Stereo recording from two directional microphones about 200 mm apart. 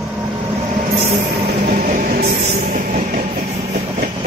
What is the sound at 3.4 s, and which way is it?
Train, 45° right (ahead or behind).